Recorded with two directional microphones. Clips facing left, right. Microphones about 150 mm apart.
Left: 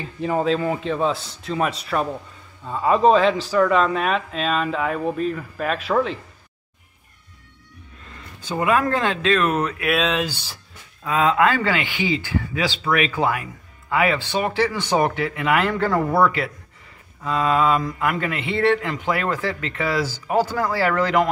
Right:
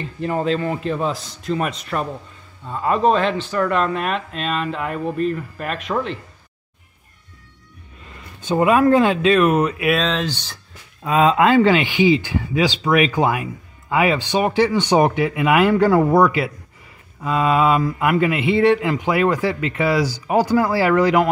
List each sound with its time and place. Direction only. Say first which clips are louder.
0.0 s speech: even; centre (ahead or behind)
8.5 s speech: right 4 dB; 20° right (ahead or behind)
8.8 s speech: right 7 dB; 10° right (ahead or behind)
9.9 s speech: right 1 dB; 10° left (ahead or behind)
11.1 s speech: right 3 dB; 20° right (ahead or behind)